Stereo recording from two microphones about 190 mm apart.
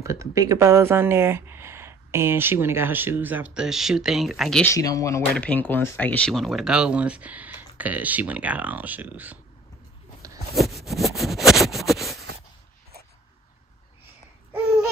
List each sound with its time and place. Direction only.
0.0 s speech: 15° right (ahead or behind); by 4.6 s centre (ahead or behind)
4.6 s speech: 20° left (ahead or behind); by 9.4 s 10° right (ahead or behind)
10.5 s a sound: centre (ahead or behind)